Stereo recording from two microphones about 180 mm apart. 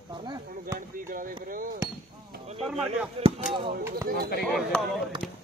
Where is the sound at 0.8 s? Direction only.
50° right (ahead or behind).